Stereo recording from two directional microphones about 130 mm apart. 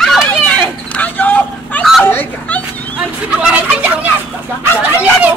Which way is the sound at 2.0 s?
15° left (ahead or behind).